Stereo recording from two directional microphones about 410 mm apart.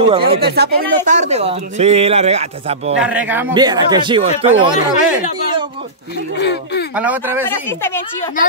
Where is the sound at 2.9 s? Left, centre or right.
Centre.